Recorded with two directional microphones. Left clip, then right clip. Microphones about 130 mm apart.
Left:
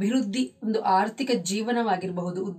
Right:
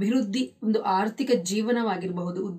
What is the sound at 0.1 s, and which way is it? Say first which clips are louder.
A woman's voice: even; 5° left (ahead or behind).